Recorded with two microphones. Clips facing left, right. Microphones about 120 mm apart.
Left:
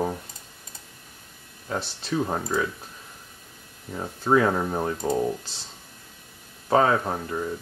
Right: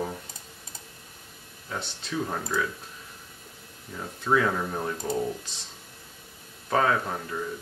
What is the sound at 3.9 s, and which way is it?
Speech, 30° left (ahead or behind).